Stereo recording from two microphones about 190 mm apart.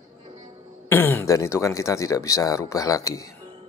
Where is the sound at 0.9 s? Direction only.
10° left (ahead or behind).